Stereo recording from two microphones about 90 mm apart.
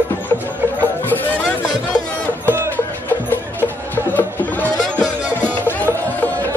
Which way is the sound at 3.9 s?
20° left (ahead or behind).